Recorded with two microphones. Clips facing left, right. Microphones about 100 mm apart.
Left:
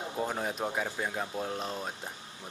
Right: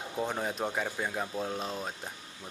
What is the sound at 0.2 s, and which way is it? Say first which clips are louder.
A man's voice: right 1 dB; centre (ahead or behind).